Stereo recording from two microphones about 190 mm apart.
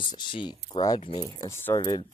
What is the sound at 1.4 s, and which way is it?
Speech, 15° left (ahead or behind).